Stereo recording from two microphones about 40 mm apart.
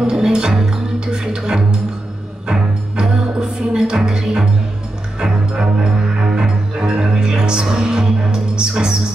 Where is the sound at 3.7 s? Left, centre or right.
Centre.